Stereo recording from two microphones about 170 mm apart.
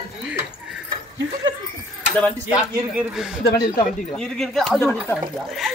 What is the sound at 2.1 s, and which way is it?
Speech, 10° left (ahead or behind).